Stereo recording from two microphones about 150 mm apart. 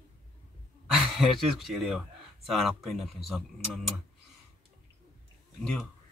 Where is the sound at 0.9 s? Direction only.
5° right (ahead or behind).